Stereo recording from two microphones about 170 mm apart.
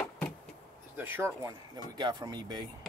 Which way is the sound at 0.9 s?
15° right (ahead or behind).